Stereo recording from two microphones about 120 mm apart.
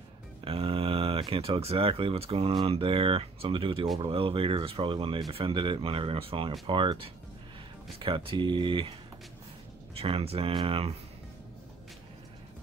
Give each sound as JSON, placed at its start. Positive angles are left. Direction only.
{"t": 0.5, "sound": "speech", "side_deg": -50}
{"t": 9.9, "sound": "speech", "side_deg": -55}